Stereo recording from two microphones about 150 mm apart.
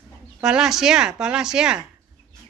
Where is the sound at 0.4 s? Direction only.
5° right (ahead or behind).